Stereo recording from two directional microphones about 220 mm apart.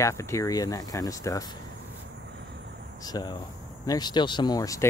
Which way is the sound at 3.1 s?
20° left (ahead or behind).